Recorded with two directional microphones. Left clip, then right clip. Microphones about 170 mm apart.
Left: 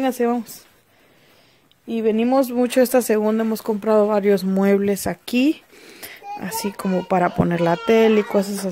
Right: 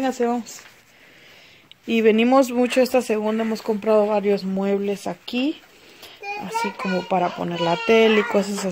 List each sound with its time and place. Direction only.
0.0 s speech: 30° left (ahead or behind)
1.9 s speech: 5° right (ahead or behind)
2.1 s speech: 10° left (ahead or behind)
2.8 s speech: 30° left (ahead or behind)
7.7 s speech: 20° left (ahead or behind)